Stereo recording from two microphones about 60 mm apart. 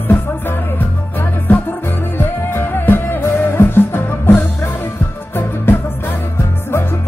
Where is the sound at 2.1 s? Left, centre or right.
Left.